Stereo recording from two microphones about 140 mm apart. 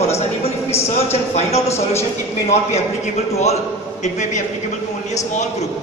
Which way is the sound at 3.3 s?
50° left (ahead or behind).